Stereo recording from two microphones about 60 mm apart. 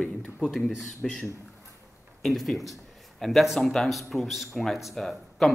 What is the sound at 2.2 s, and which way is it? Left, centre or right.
Speech, centre.